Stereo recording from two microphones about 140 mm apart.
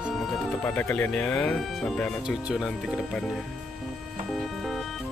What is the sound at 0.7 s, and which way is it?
Speech, 10° left (ahead or behind).